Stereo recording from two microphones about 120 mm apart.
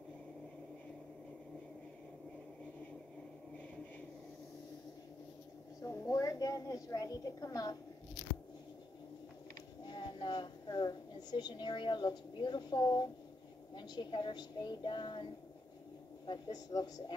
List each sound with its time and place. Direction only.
5.8 s a woman's voice: 30° left (ahead or behind)
9.8 s a woman's voice: 40° left (ahead or behind)
16.3 s speech: 30° left (ahead or behind)